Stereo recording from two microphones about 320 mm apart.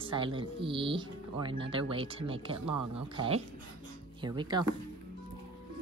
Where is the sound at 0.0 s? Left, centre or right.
Centre.